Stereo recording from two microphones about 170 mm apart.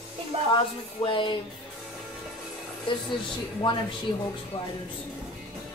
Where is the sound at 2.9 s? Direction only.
30° left (ahead or behind).